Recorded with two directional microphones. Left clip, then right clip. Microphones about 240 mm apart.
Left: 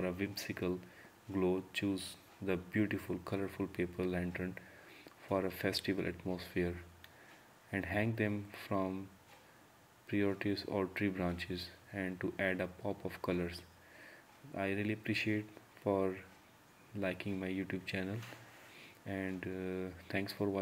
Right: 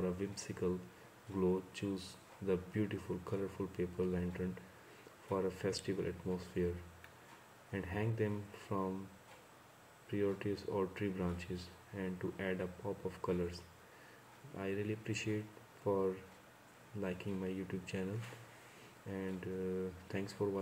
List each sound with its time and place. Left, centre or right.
0.0 s speech: left
7.7 s speech: left
10.0 s speech: left
14.6 s speech: left
19.0 s speech: left